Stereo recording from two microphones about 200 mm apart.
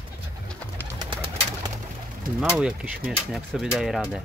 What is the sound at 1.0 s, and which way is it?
Bird, 20° right (ahead or behind).